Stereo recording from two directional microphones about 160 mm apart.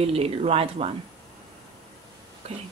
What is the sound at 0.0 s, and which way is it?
Speech, 40° right (ahead or behind).